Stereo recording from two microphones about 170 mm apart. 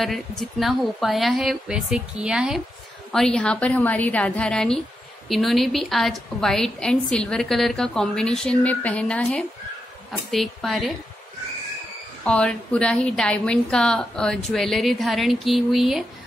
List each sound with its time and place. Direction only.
0.0 s a woman's voice: centre (ahead or behind)
12.3 s a woman's voice: 5° left (ahead or behind)